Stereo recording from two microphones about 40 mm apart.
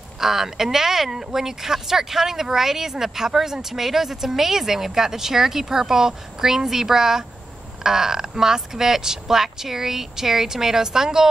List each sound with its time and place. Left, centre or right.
0.2 s speech: centre